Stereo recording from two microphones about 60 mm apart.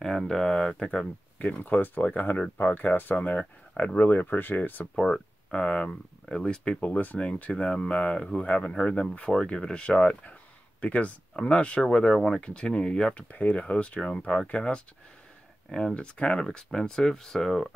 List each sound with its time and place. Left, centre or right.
0.2 s speech: centre
1.6 s speech: left
4.9 s speech: centre
6.8 s speech: left; by 17.7 s centre